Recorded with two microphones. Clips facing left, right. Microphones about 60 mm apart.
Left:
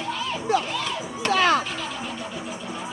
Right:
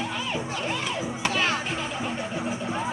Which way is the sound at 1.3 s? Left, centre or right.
Left.